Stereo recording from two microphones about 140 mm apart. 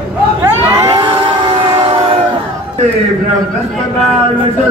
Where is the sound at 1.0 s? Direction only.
40° right (ahead or behind).